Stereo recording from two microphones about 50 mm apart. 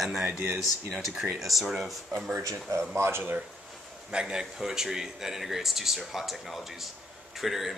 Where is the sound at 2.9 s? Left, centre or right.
Right.